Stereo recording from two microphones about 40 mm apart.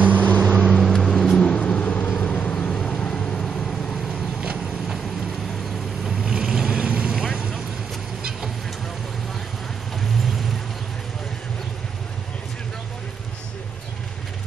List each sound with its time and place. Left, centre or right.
0.0 s vehicle: right
0.7 s vehicle: centre
1.0 s vehicle: centre
1.5 s vehicle: left
2.0 s vehicle: left
2.2 s vehicle: left
3.3 s vehicle: centre
6.2 s vehicle: centre
7.2 s vehicle: centre